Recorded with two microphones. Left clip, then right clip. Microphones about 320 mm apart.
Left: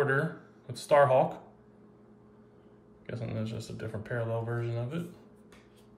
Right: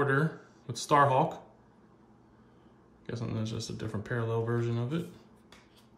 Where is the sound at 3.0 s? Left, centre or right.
Centre.